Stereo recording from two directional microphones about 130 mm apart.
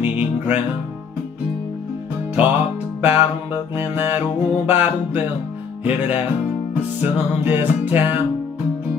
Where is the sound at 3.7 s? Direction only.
15° right (ahead or behind).